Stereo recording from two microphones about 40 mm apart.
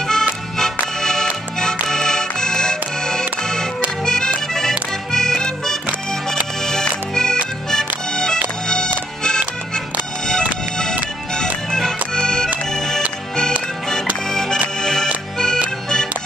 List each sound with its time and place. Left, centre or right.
0.1 s accordion: centre
1.9 s music: centre
4.0 s accordion: centre
7.2 s accordion: centre
8.6 s music: centre
11.7 s music: centre
14.8 s accordion: centre